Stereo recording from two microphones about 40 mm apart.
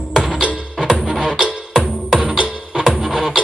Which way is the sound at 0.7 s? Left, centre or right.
Centre.